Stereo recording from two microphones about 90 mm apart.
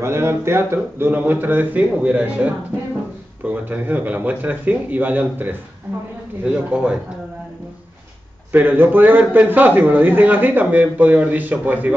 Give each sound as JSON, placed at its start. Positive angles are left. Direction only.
{"t": 0.0, "sound": "a man's voice", "side_deg": -30}
{"t": 6.4, "sound": "a man's voice", "side_deg": -10}
{"t": 8.5, "sound": "a man's voice", "side_deg": -25}